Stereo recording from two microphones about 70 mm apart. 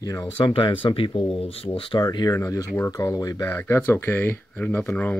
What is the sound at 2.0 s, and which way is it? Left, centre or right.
Speech, left.